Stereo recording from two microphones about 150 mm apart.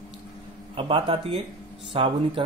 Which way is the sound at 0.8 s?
35° right (ahead or behind).